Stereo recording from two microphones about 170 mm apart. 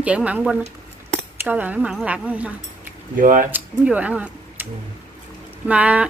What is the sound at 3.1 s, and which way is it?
Speech, 50° right (ahead or behind).